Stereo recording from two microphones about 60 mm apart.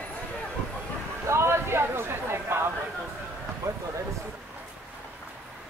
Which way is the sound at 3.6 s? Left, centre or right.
Right.